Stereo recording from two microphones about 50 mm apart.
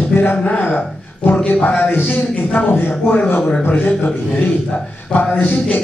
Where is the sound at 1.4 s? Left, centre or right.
Left.